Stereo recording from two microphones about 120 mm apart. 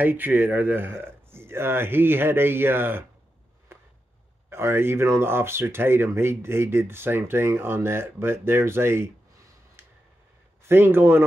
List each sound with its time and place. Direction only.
0.0 s speech: 15° right (ahead or behind)
4.5 s speech: 20° right (ahead or behind)
10.7 s speech: 20° right (ahead or behind)